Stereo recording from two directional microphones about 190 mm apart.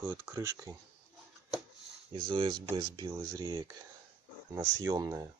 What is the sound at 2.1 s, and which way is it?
Speech, 25° right (ahead or behind).